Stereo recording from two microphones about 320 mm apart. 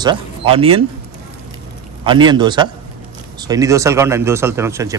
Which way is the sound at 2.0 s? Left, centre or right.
Centre.